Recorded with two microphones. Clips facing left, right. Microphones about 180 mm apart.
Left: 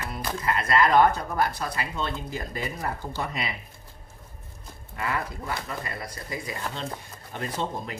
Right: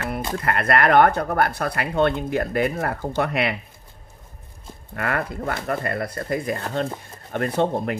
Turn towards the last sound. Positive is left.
turn(degrees=-60)  # may be behind; listen again after turning